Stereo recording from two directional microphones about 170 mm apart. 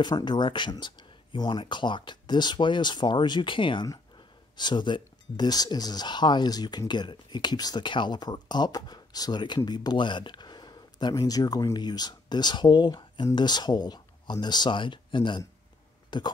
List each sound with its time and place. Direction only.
0.0 s speech: 25° left (ahead or behind)